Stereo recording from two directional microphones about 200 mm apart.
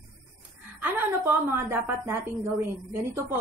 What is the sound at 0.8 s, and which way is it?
A woman's voice, 10° right (ahead or behind).